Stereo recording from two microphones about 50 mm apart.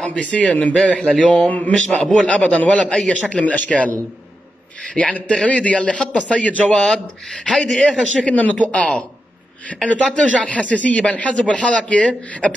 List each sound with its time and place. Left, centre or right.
0.0 s a man's voice: left
1.5 s a sound: left
1.9 s a man's voice: centre
8.4 s a man's voice: left